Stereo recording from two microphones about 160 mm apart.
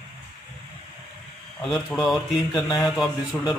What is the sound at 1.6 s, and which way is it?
Speech, 5° left (ahead or behind).